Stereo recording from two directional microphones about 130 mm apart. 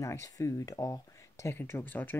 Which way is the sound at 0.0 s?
20° left (ahead or behind).